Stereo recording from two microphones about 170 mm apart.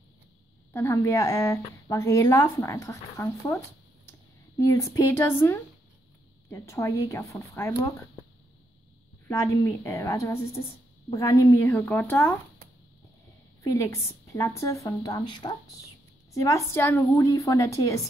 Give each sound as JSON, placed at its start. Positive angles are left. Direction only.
{"t": 0.7, "sound": "a woman's voice", "side_deg": 15}
{"t": 9.3, "sound": "a woman's voice", "side_deg": 15}
{"t": 13.7, "sound": "a woman's voice", "side_deg": 20}